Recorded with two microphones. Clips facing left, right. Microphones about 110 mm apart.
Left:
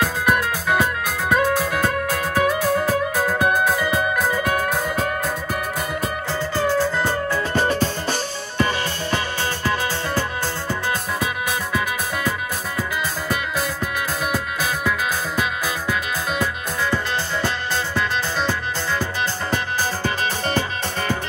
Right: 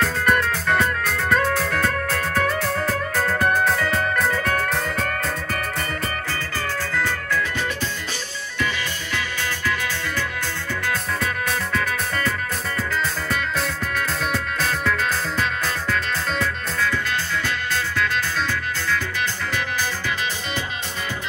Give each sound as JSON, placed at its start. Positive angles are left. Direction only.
{"t": 0.0, "sound": "music", "side_deg": 10}
{"t": 7.3, "sound": "music", "side_deg": 45}
{"t": 11.7, "sound": "music", "side_deg": 10}
{"t": 19.5, "sound": "music", "side_deg": 35}